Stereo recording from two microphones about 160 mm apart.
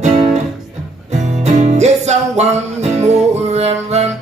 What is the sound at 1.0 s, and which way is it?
Music, 45° right (ahead or behind).